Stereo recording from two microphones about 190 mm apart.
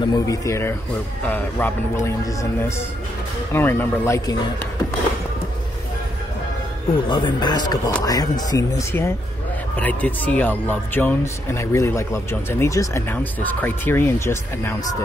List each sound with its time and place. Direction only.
0.0 s speech: 20° left (ahead or behind)
3.5 s speech: 10° left (ahead or behind)
7.1 s speech: 25° left (ahead or behind)